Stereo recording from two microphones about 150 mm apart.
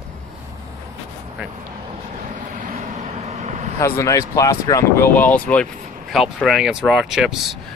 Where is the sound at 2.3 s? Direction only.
55° right (ahead or behind).